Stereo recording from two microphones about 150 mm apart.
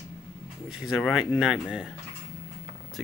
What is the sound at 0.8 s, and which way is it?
Speech, centre (ahead or behind).